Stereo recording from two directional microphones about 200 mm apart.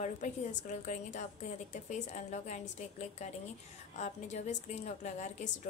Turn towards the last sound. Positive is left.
turn(degrees=35)  # may be behind; listen again after turning